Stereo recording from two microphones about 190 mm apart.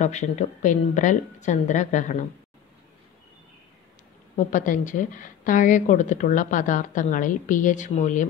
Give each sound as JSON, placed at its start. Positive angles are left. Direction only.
{"t": 0.0, "sound": "a woman's voice", "side_deg": 40}
{"t": 4.4, "sound": "a woman's voice", "side_deg": 40}